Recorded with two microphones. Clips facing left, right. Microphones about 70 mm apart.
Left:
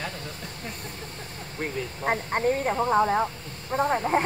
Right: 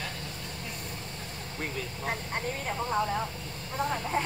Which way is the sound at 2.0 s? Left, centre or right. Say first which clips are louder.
Left 9 dB; left.